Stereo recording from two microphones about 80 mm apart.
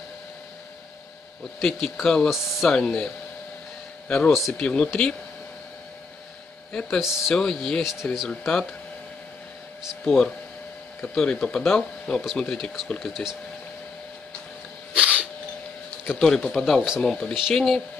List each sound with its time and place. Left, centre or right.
1.6 s speech: centre
4.1 s speech: centre
6.7 s speech: centre
7.0 s speech: centre
7.3 s speech: centre
7.8 s speech: centre
8.3 s speech: centre
10.0 s speech: centre
13.1 s speech: centre
15.0 s a sound: centre
16.2 s speech: centre
16.5 s speech: centre